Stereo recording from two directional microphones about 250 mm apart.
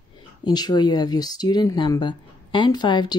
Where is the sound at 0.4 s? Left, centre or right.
Centre.